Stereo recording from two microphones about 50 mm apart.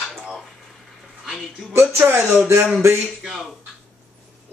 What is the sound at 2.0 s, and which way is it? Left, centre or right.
Speech, right.